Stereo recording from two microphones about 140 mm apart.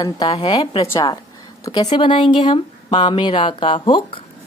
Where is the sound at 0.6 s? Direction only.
45° left (ahead or behind).